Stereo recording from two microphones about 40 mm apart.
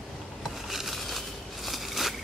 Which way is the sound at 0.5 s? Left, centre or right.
Centre.